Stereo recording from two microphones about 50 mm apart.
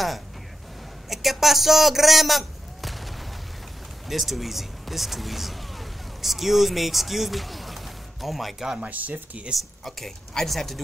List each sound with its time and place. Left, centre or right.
1.0 s a man's voice: centre
8.7 s speech: right
9.5 s speech: centre